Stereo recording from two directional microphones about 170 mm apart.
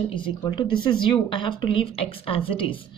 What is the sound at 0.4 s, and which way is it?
Speech, 25° left (ahead or behind).